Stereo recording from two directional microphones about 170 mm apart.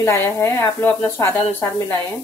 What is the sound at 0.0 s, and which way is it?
Speech, 15° left (ahead or behind).